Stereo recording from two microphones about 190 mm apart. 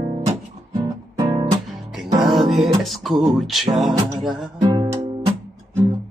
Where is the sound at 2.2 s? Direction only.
Centre (ahead or behind).